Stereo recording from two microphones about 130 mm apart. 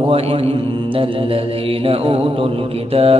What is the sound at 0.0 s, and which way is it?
Mantra, 45° right (ahead or behind).